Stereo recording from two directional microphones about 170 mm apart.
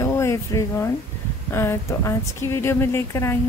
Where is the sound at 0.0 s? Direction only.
15° left (ahead or behind).